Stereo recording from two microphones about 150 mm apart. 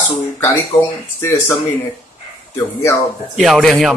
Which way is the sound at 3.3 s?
Centre (ahead or behind).